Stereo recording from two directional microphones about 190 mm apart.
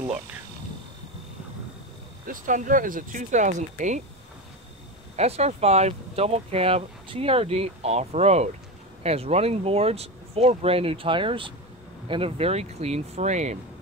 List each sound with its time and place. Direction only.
2.2 s speech: 45° right (ahead or behind)
5.1 s speech: 35° right (ahead or behind)